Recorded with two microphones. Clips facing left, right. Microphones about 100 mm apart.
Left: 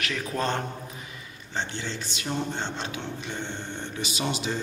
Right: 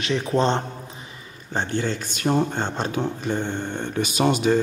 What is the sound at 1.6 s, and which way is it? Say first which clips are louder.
Speech: right 7 dB; 50° right (ahead or behind).